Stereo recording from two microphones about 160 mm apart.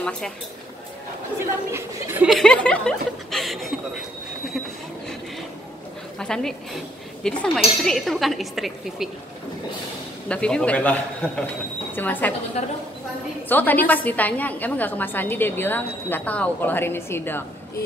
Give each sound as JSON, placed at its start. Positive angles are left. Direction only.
{"t": 1.7, "sound": "speech", "side_deg": -15}
{"t": 2.2, "sound": "speech", "side_deg": 0}
{"t": 6.1, "sound": "a woman's voice", "side_deg": 5}
{"t": 10.2, "sound": "a woman's voice", "side_deg": 5}
{"t": 12.6, "sound": "a woman's voice", "side_deg": 45}
{"t": 13.5, "sound": "a woman's voice", "side_deg": 10}